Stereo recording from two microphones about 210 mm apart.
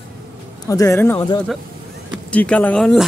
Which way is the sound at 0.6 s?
15° left (ahead or behind).